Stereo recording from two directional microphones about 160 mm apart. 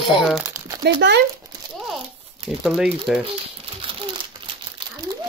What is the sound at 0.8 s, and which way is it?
Speech, 90° right.